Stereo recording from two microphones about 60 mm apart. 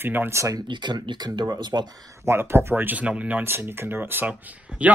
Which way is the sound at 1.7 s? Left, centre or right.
Right.